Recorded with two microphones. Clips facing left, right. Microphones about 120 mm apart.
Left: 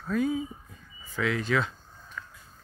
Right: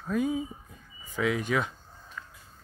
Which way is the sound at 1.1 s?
15° right (ahead or behind).